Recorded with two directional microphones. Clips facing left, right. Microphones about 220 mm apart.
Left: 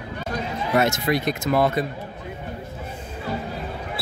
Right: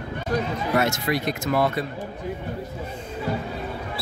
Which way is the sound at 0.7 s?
20° left (ahead or behind).